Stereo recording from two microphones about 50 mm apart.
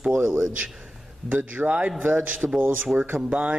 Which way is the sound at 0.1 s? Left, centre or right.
Right.